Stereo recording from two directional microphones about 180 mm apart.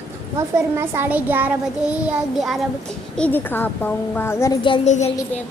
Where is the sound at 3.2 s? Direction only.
10° left (ahead or behind).